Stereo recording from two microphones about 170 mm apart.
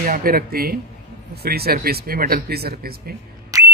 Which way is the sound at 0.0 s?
55° right (ahead or behind).